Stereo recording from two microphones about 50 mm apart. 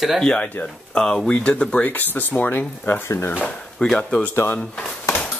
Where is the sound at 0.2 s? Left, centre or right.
Centre.